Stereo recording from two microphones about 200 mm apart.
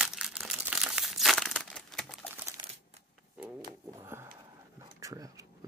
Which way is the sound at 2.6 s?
25° right (ahead or behind).